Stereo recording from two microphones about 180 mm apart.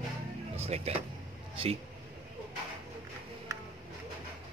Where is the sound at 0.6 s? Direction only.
35° right (ahead or behind).